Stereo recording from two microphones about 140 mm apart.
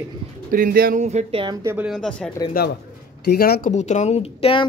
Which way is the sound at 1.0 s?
55° right (ahead or behind).